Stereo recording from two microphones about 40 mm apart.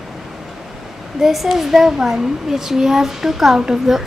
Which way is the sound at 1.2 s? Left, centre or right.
Centre.